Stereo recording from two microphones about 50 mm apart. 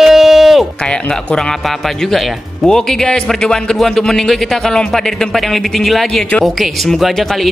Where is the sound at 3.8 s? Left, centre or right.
Centre.